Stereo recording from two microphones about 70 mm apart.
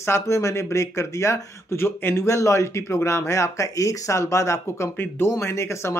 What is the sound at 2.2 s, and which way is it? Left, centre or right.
Speech, left.